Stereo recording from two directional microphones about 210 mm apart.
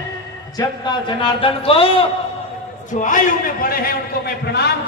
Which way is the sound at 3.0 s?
40° left (ahead or behind).